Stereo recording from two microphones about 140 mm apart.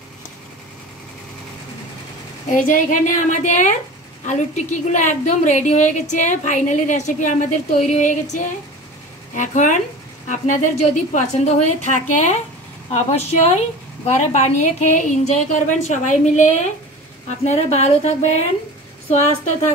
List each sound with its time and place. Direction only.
2.5 s a woman's voice: 70° left (ahead or behind)
11.4 s a woman's voice: 55° left (ahead or behind)